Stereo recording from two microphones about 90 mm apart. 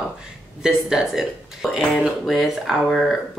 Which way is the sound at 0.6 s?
5° right (ahead or behind).